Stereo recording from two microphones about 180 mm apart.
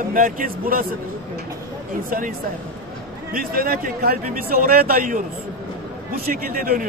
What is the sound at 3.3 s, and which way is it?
A man's voice, 55° right (ahead or behind).